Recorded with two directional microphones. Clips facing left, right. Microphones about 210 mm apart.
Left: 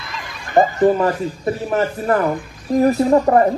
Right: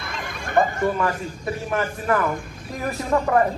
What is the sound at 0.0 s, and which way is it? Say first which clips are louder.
Neigh: right 1 dB; 50° right (ahead or behind).